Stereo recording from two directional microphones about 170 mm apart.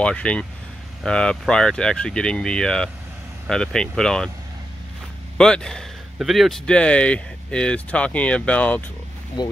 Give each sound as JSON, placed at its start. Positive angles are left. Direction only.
{"t": 0.0, "sound": "speech", "side_deg": 5}
{"t": 5.4, "sound": "speech", "side_deg": 5}
{"t": 9.4, "sound": "speech", "side_deg": 25}